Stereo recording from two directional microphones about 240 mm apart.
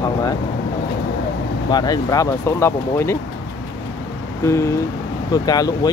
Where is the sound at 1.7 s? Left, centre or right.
Centre.